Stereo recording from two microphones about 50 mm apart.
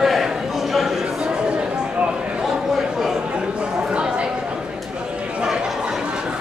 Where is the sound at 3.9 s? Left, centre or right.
Centre.